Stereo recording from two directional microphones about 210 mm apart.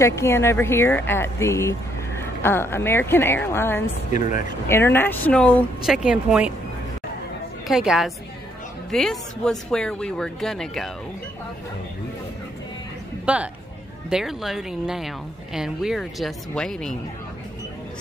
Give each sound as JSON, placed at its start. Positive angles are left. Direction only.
{"t": 0.0, "sound": "speech", "side_deg": 15}
{"t": 4.1, "sound": "speech", "side_deg": 40}
{"t": 4.6, "sound": "speech", "side_deg": 10}
{"t": 6.0, "sound": "a woman's voice", "side_deg": -5}
{"t": 7.6, "sound": "a woman's voice", "side_deg": -5}
{"t": 13.2, "sound": "a woman's voice", "side_deg": -5}